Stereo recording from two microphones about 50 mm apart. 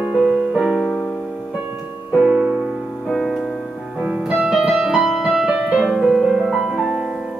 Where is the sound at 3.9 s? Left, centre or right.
Centre.